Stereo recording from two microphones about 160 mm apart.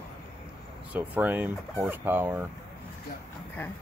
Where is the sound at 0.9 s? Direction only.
10° right (ahead or behind).